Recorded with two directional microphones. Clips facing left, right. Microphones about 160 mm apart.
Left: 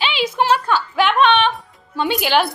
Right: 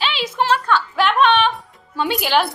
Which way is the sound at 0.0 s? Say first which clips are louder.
Left 2 dB; centre (ahead or behind).